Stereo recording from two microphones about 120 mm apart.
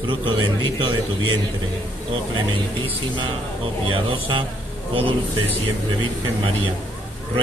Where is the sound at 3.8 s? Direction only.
45° right (ahead or behind).